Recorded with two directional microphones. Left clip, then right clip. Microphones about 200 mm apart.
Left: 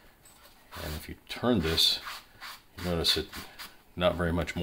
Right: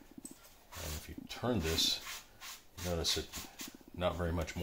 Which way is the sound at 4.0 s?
30° left (ahead or behind).